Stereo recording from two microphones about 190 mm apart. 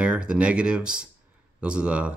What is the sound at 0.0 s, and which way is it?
Speech, 5° right (ahead or behind).